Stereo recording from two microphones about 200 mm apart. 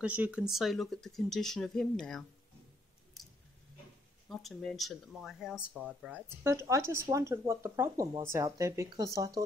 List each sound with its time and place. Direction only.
0.0 s speech: 5° right (ahead or behind)
4.3 s speech: centre (ahead or behind); by 9.4 s 15° right (ahead or behind)